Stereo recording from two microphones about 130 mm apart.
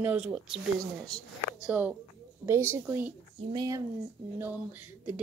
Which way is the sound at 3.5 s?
30° right (ahead or behind).